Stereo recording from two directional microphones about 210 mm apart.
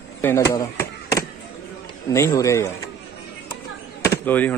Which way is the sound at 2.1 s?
15° left (ahead or behind).